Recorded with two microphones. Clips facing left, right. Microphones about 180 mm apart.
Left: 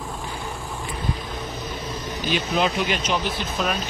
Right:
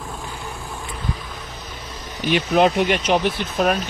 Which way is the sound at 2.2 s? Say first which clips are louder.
Right 6 dB; 60° right (ahead or behind).